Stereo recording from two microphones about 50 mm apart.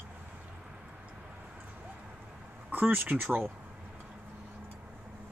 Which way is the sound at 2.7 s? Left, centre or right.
Right.